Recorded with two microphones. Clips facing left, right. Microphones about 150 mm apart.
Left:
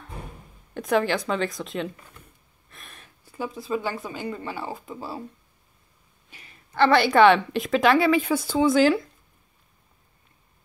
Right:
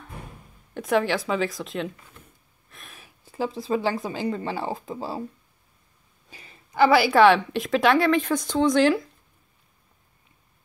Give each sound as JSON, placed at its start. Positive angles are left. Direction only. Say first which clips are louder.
{"t": 0.7, "sound": "a woman's voice", "louder": "even", "side_deg": 0}
{"t": 2.7, "sound": "a sound", "louder": "even", "side_deg": 0}
{"t": 3.3, "sound": "speech", "louder": "right 3 dB", "side_deg": -30}
{"t": 6.7, "sound": "a woman's voice", "louder": "right 1 dB", "side_deg": -10}